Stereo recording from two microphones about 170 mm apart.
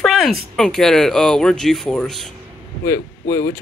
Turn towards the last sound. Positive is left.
turn(degrees=15)  # may be behind; listen again after turning